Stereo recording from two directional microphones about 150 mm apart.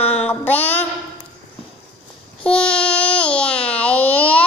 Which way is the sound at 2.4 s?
5° left (ahead or behind).